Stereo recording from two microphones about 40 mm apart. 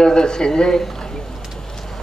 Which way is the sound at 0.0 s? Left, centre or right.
Centre.